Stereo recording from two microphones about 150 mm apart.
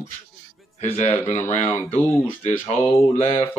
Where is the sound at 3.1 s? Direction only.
40° left (ahead or behind).